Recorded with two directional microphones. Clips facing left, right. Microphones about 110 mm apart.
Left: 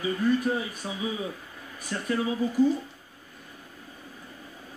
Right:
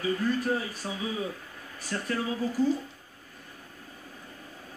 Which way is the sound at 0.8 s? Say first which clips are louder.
Even; 15° left (ahead or behind).